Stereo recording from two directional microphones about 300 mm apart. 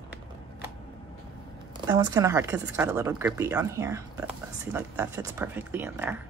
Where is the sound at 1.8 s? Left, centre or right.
Centre.